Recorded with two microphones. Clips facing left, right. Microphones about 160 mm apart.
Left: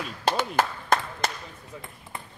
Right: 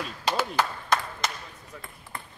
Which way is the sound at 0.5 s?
50° left (ahead or behind).